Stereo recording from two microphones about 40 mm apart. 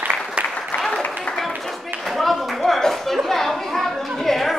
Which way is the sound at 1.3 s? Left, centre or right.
Left.